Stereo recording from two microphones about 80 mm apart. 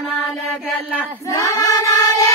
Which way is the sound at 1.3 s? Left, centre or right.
Left.